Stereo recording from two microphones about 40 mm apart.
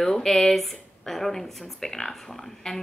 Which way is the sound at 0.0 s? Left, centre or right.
Centre.